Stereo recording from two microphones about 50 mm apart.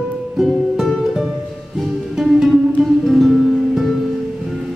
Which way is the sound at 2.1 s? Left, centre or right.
Centre.